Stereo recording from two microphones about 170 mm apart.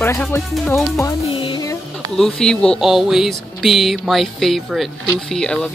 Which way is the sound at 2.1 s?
5° left (ahead or behind).